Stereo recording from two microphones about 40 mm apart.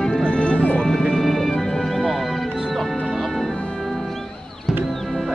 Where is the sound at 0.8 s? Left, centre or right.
Centre.